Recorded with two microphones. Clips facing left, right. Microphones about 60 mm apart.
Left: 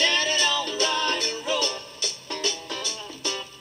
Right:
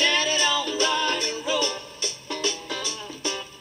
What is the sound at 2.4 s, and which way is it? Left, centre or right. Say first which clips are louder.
Music: right 1 dB; right.